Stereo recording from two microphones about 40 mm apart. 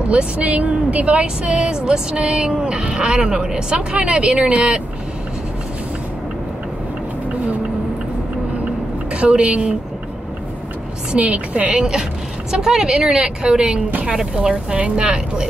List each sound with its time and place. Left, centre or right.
0.1 s a woman's voice: right
9.1 s a woman's voice: right
11.1 s a woman's voice: right
11.8 s a woman's voice: centre
14.8 s a woman's voice: right